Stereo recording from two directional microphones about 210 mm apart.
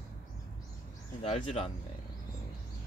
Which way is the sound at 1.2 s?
25° left (ahead or behind).